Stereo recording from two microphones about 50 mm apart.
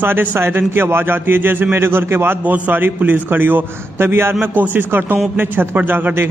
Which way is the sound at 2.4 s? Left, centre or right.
Right.